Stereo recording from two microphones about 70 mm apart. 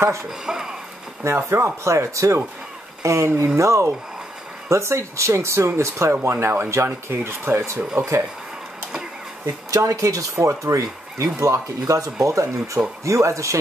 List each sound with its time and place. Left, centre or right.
0.5 s a sound: centre
1.3 s speech: right
9.7 s speech: right